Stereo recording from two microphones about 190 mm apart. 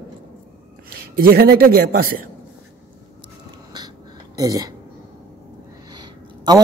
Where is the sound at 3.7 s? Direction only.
20° right (ahead or behind).